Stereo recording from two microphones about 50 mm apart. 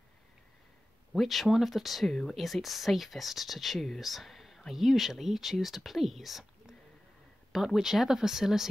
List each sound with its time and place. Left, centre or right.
1.1 s speech: centre